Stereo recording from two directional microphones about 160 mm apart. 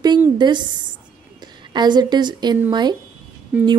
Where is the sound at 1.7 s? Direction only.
25° right (ahead or behind).